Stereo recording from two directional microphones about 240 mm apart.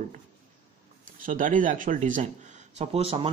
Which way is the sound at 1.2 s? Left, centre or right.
Right.